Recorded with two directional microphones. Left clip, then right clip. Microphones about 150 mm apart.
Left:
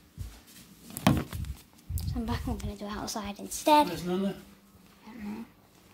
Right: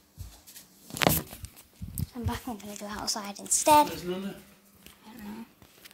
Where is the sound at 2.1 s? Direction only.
Centre (ahead or behind).